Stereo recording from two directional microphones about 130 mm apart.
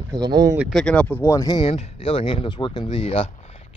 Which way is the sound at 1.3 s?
30° left (ahead or behind).